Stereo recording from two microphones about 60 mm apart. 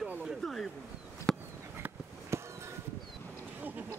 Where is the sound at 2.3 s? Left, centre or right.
Right.